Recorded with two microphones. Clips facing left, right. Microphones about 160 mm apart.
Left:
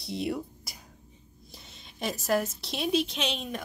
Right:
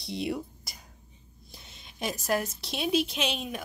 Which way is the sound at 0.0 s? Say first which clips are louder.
Even; centre (ahead or behind).